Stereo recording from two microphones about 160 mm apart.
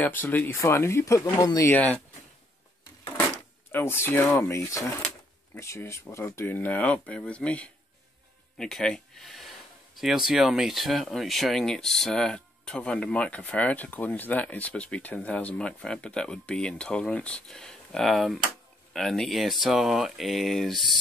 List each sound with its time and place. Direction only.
0.0 s speech: 10° left (ahead or behind)
3.7 s speech: 15° left (ahead or behind)